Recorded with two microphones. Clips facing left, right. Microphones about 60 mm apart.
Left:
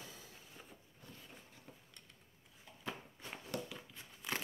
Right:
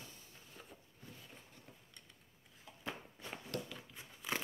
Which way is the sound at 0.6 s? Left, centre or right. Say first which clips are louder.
Right 2 dB; centre.